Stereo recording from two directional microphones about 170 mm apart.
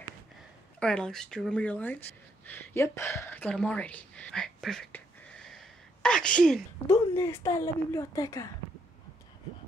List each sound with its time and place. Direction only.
0.7 s speech: 5° left (ahead or behind)
6.9 s a woman's voice: 15° left (ahead or behind)